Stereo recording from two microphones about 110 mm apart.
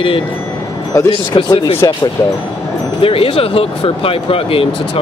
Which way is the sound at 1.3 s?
45° left (ahead or behind).